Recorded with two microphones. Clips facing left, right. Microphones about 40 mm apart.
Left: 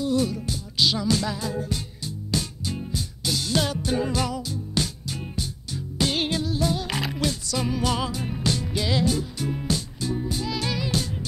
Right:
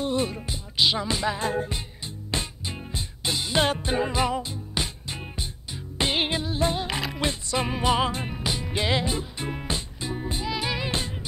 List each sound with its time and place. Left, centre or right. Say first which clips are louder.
0.0 s music: left 2 dB; right
1.4 s music: right 3 dB; right
2.3 s music: left 2 dB; right
5.9 s music: even; right
8.3 s music: left 3 dB; centre
8.7 s music: even; right